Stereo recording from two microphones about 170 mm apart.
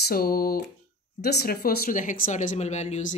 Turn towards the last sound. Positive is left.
turn(degrees=40)  # may be behind; listen again after turning